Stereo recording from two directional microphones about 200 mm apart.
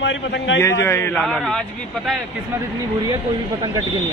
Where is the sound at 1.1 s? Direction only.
Centre (ahead or behind).